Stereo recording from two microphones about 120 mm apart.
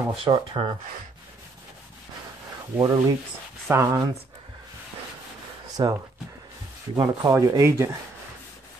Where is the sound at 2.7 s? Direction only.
30° right (ahead or behind).